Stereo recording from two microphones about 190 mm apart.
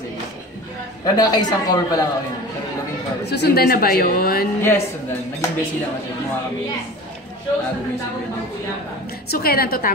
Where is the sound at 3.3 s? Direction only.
60° left (ahead or behind).